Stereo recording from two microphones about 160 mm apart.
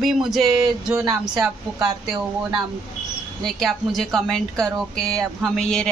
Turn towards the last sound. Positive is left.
turn(degrees=5)  # may be behind; listen again after turning